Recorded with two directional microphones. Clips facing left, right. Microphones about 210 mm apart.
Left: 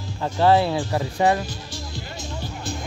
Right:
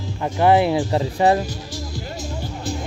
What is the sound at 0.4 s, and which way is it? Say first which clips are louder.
Speech: right 2 dB; 15° right (ahead or behind).